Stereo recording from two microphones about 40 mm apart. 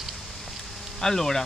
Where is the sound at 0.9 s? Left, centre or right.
Centre.